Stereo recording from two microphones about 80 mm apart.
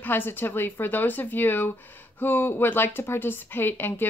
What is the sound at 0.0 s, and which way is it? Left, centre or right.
Speech, left.